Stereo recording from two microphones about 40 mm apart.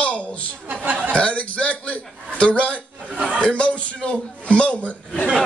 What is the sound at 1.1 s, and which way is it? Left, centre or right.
A man's voice, left.